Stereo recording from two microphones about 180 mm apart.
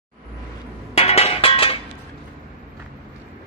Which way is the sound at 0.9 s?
35° left (ahead or behind).